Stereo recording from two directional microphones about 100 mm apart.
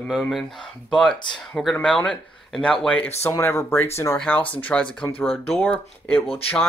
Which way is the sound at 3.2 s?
25° left (ahead or behind).